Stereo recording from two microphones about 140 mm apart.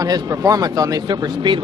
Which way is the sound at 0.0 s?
25° right (ahead or behind).